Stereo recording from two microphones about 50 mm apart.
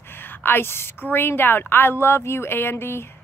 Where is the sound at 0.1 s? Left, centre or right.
Left.